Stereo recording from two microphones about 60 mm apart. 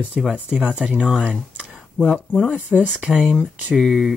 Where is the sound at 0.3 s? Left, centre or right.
Centre.